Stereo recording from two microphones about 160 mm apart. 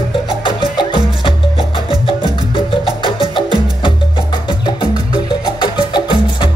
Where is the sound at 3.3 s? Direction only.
30° left (ahead or behind).